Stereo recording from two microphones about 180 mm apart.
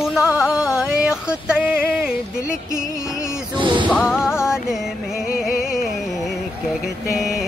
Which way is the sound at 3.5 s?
25° right (ahead or behind).